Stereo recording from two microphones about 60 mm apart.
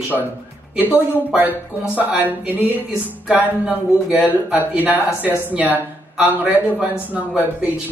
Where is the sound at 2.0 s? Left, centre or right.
Right.